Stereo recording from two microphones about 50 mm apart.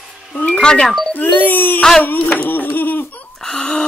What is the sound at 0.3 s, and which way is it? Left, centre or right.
Music, left.